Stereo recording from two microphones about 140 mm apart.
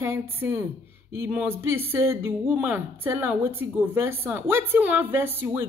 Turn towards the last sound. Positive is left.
turn(degrees=-15)  # may be behind; listen again after turning